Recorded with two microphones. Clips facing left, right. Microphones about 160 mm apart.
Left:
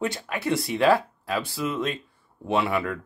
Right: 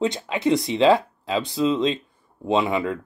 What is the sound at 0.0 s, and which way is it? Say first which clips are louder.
Speech: right 6 dB; 20° right (ahead or behind).